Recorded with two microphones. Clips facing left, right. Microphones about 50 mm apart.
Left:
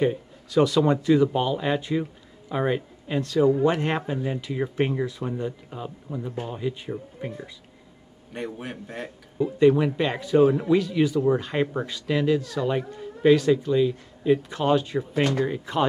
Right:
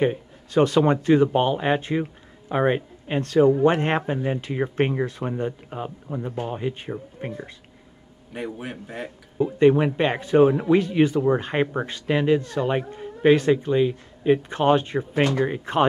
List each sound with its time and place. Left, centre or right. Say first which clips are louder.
0.0 s speech: right 1 dB; right
8.3 s a man's voice: right 1 dB; centre
9.4 s speech: right 1 dB; right